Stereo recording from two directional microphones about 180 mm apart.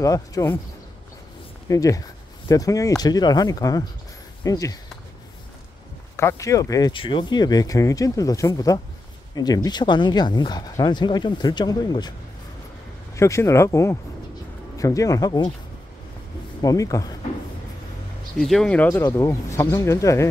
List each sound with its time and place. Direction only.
0.0 s speech: 20° left (ahead or behind)
1.7 s speech: 20° left (ahead or behind)
6.1 s speech: 15° left (ahead or behind)
13.1 s speech: 15° left (ahead or behind)
16.6 s speech: 20° left (ahead or behind)
18.4 s speech: 5° left (ahead or behind)